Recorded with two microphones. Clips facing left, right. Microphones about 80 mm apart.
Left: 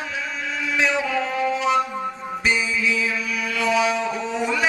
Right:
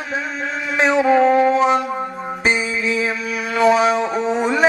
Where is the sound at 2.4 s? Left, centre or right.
Right.